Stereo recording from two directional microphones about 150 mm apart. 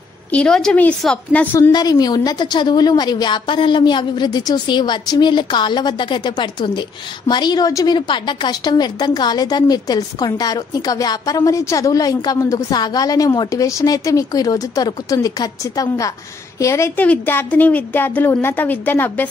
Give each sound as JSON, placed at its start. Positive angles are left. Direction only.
{"t": 0.3, "sound": "a woman's voice", "side_deg": 5}
{"t": 1.7, "sound": "a woman's voice", "side_deg": 25}